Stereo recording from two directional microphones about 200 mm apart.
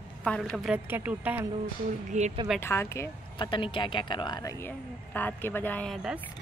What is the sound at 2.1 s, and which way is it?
Speech, 35° right (ahead or behind).